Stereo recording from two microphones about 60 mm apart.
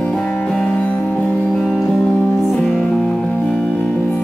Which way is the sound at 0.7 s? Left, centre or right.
Left.